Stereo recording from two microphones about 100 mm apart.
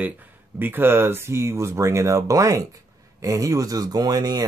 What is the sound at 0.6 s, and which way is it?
Speech, 20° right (ahead or behind).